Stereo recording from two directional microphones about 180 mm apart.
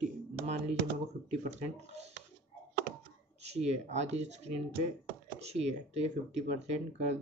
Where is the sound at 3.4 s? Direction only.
35° right (ahead or behind).